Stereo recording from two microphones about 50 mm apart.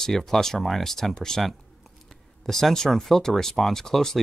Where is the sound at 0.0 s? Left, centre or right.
Centre.